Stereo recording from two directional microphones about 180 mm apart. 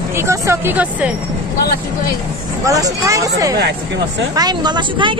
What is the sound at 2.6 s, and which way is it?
Speech, 20° right (ahead or behind).